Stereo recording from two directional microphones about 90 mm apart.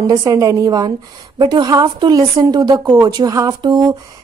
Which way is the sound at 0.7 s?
50° right (ahead or behind).